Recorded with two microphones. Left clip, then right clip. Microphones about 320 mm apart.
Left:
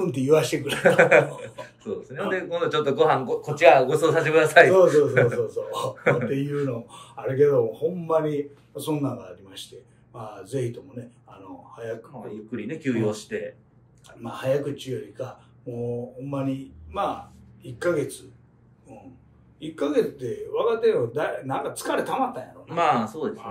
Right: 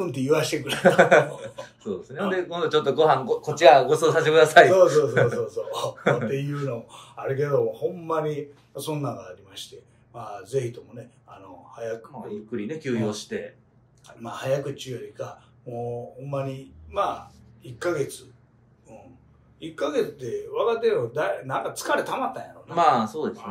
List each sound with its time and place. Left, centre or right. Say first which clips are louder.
0.0 s speech: left 3 dB; centre
6.9 s speech: even; centre
12.2 s speech: right 2 dB; centre
14.2 s speech: left 1 dB; centre
19.6 s speech: left 2 dB; centre